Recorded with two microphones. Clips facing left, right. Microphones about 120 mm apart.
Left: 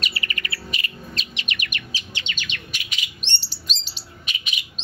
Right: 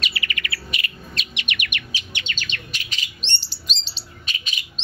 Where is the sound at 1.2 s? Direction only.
35° left (ahead or behind).